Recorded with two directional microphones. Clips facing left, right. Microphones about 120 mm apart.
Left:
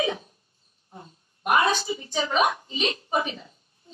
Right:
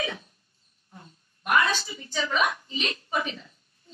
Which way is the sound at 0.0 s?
40° left (ahead or behind).